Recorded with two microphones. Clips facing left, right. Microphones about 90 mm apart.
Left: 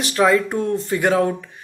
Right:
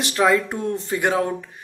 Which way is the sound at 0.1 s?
20° right (ahead or behind).